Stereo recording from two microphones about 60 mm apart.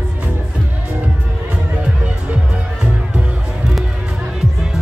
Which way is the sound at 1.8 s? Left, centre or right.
Right.